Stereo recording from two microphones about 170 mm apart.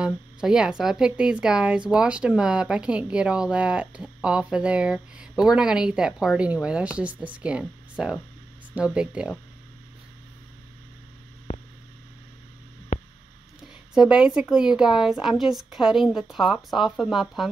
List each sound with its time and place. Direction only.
0.0 s a woman's voice: 5° right (ahead or behind)
11.5 s hum: 35° left (ahead or behind)
12.9 s a sound: 45° left (ahead or behind)
13.6 s a woman's voice: 5° right (ahead or behind)